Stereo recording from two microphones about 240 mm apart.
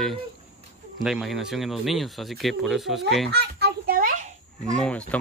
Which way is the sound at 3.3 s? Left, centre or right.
Right.